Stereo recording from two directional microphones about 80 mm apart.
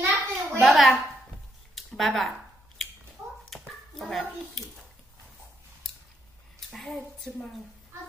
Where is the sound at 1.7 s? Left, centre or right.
Centre.